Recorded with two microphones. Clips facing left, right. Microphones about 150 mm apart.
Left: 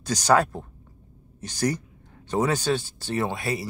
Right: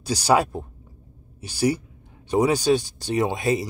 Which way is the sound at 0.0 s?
10° right (ahead or behind).